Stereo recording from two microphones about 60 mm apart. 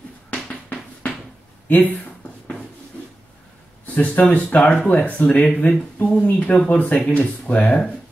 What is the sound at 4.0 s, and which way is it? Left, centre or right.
Speech, left.